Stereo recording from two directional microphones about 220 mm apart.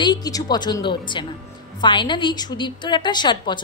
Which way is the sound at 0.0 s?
20° left (ahead or behind).